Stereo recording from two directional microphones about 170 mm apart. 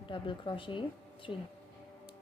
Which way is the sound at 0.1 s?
30° left (ahead or behind).